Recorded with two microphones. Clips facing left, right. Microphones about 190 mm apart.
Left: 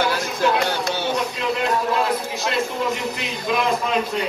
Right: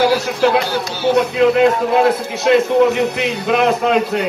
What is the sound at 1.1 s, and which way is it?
A man's voice, 60° right (ahead or behind).